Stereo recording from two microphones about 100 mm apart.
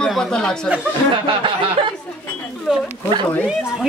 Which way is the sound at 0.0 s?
5° left (ahead or behind).